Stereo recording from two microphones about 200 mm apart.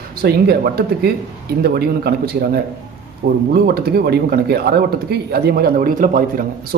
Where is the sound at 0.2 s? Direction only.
50° right (ahead or behind).